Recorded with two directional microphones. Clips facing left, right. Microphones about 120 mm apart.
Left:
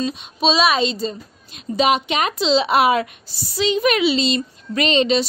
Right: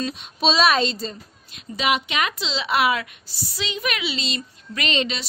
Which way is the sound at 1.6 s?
30° left (ahead or behind).